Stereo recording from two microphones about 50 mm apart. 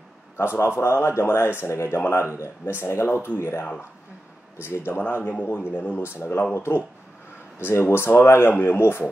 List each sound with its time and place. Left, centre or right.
0.4 s a man's voice: left
4.9 s a man's voice: left
6.5 s speech: left
7.8 s speech: left
8.5 s a man's voice: left